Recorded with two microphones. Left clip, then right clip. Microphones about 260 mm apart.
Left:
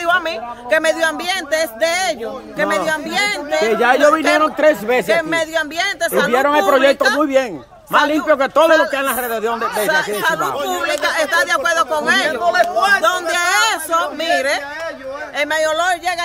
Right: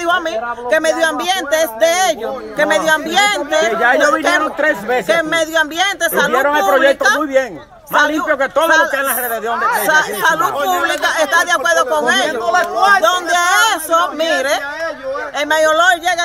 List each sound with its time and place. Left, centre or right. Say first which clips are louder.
0.7 s speech: right 1 dB; centre
3.7 s speech: left 2 dB; left
5.0 s speech: right 2 dB; centre
6.3 s speech: left 1 dB; left
9.8 s speech: right 3 dB; centre